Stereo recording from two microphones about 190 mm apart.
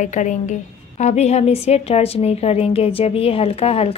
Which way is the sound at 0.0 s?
40° left (ahead or behind).